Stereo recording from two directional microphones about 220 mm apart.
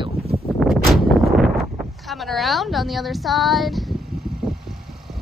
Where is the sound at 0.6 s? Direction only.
Centre (ahead or behind).